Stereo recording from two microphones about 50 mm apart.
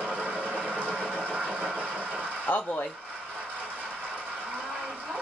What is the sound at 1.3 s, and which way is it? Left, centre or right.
Engine, right.